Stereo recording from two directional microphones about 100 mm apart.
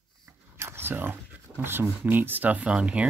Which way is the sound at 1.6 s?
20° right (ahead or behind).